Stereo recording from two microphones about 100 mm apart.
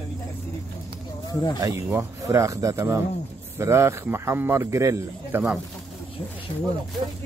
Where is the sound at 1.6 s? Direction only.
35° right (ahead or behind).